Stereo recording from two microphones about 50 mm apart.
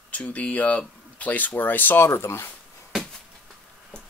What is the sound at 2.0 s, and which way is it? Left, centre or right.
Speech, left.